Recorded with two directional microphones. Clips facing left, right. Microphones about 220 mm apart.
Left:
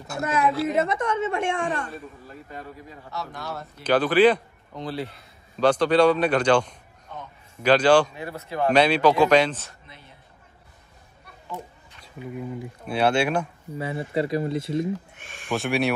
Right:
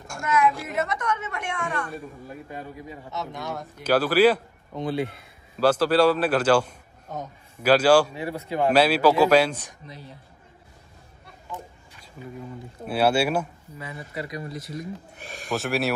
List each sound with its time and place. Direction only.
0.2 s a woman's voice: 30° left (ahead or behind)
2.0 s a man's voice: 15° right (ahead or behind)
7.1 s a sound: 40° right (ahead or behind)
7.6 s speech: 5° right (ahead or behind)
9.8 s speech: 35° right (ahead or behind)
12.8 s speech: 5° right (ahead or behind)
13.7 s a woman's voice: 30° left (ahead or behind)
15.1 s speech: 35° right (ahead or behind)
15.5 s a man's voice: centre (ahead or behind)